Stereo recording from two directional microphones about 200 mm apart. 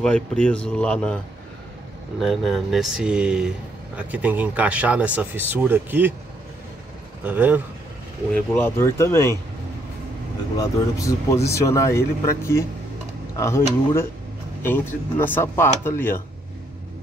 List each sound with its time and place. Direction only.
0.0 s speech: 5° left (ahead or behind)
7.2 s speech: 10° right (ahead or behind)
8.3 s speech: 10° left (ahead or behind)
10.6 s speech: 15° left (ahead or behind)
13.4 s speech: 15° left (ahead or behind)